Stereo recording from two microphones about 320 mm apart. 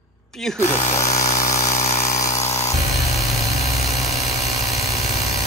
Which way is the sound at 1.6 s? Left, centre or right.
Left.